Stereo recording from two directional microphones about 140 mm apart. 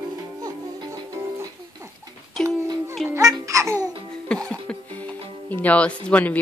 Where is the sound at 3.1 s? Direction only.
20° right (ahead or behind).